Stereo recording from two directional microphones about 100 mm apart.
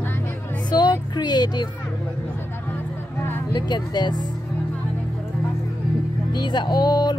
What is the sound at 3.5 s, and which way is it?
Speech, 45° left (ahead or behind).